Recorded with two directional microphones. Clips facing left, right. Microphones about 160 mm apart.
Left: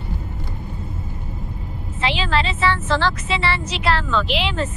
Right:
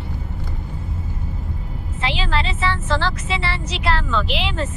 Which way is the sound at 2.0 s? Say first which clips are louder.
Left 2 dB; 90° left.